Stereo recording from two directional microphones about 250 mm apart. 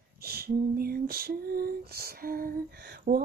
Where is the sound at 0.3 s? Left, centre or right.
Right.